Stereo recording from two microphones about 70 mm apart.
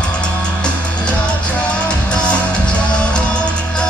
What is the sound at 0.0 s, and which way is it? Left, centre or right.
Music, centre.